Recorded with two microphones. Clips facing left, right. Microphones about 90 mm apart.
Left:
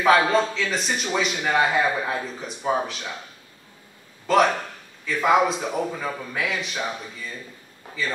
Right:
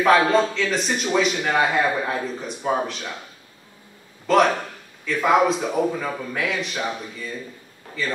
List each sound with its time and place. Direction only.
0.0 s a man's voice: centre (ahead or behind)
4.3 s a man's voice: centre (ahead or behind)